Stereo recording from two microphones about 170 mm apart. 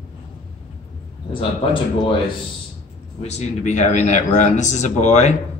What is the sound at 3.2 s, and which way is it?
A man's voice, 40° left (ahead or behind).